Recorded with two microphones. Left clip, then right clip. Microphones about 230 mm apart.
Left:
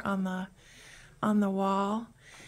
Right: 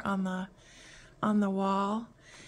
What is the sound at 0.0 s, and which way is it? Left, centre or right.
A woman's voice, centre.